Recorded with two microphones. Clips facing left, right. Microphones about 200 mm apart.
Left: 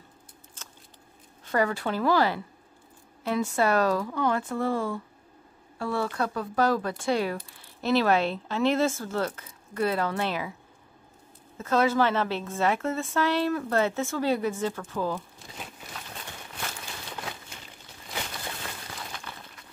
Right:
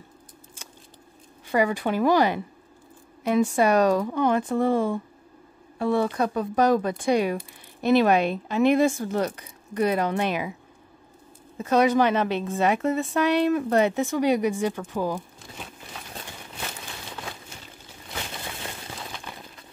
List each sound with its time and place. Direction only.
0.6 s keys jangling: 10° right (ahead or behind)
1.4 s a woman's voice: 10° right (ahead or behind)
11.5 s a woman's voice: 15° right (ahead or behind)